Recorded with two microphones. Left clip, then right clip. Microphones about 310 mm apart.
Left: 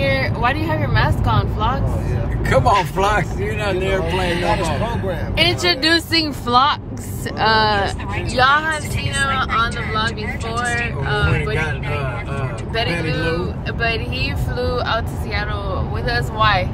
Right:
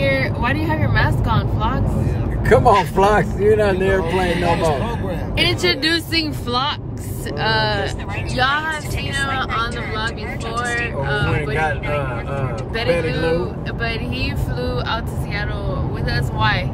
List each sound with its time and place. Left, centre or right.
0.0 s speech: centre
2.4 s speech: centre
4.0 s speech: centre
8.4 s speech: centre
13.0 s speech: centre